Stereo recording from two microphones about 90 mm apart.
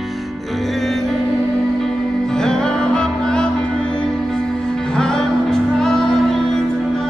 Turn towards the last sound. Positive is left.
turn(degrees=5)  # may be behind; listen again after turning